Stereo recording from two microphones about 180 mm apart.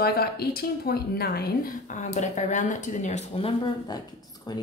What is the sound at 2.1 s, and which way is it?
Speech, 40° left (ahead or behind).